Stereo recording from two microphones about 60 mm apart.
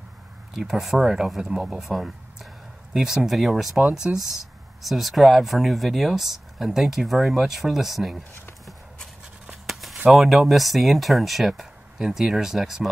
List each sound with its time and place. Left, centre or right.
0.6 s speech: centre
9.5 s a sound: centre
10.1 s speech: centre